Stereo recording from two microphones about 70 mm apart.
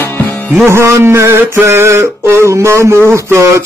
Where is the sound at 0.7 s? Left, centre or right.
Right.